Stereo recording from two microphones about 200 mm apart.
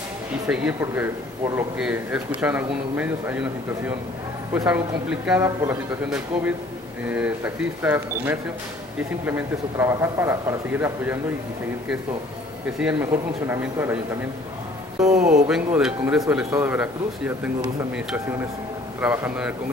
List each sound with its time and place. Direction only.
0.5 s speech: 10° right (ahead or behind)
12.7 s speech: 5° right (ahead or behind)
15.0 s speech: 35° right (ahead or behind)
15.4 s speech: 5° right (ahead or behind)